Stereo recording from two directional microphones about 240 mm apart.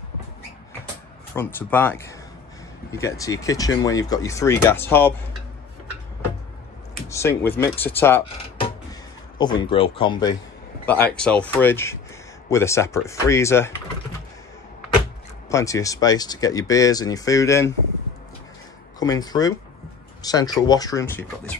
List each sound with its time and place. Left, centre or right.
1.3 s speech: centre
7.1 s speech: centre
9.4 s speech: centre
10.9 s speech: centre
15.5 s speech: centre
18.9 s speech: centre